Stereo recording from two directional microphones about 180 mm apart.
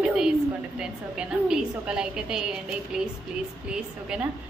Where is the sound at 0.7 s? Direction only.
5° right (ahead or behind).